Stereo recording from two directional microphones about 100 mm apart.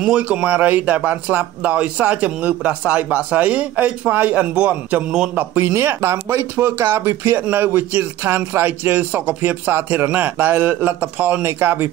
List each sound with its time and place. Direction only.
0.0 s a man's voice: 15° right (ahead or behind)